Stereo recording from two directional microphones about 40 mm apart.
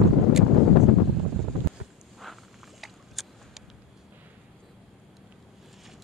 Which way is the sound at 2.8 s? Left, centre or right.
Centre.